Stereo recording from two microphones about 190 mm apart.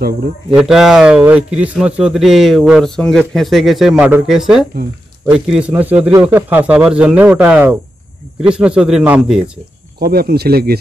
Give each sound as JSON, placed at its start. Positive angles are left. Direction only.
{"t": 0.5, "sound": "speech", "side_deg": -5}
{"t": 9.9, "sound": "speech", "side_deg": -55}